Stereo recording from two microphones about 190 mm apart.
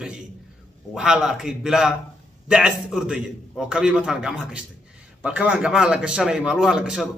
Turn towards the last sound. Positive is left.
turn(degrees=-5)  # may be behind; listen again after turning